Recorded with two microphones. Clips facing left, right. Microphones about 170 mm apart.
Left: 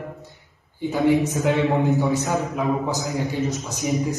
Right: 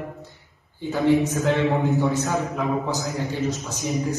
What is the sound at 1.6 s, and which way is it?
Speech, centre (ahead or behind).